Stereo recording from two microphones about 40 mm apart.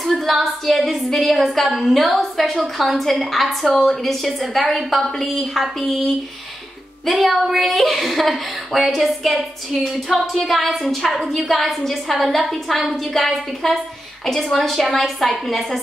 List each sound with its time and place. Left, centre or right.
0.0 s speech: centre